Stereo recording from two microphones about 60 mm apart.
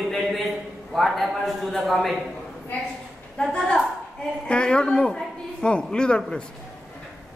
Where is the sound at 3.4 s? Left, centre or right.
Centre.